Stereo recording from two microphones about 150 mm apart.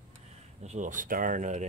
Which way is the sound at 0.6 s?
55° right (ahead or behind).